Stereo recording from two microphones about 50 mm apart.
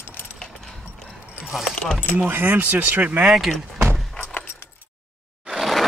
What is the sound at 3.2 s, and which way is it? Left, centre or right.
Speech, centre.